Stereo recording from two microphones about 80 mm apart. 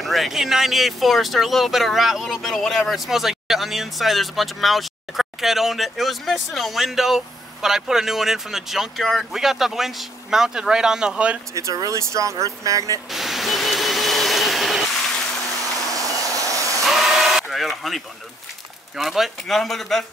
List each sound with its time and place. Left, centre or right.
0.0 s speech: centre
11.5 s speech: right
13.1 s vacuum cleaner: centre
15.9 s vehicle: right
16.8 s a sound: centre
18.9 s speech: centre